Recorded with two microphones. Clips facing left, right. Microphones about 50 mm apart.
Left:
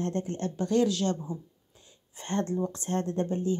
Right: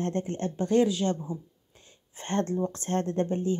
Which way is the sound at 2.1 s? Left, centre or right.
Right.